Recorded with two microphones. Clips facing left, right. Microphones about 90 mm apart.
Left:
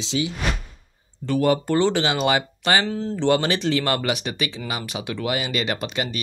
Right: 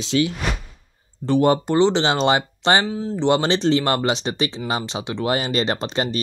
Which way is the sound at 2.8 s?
10° right (ahead or behind).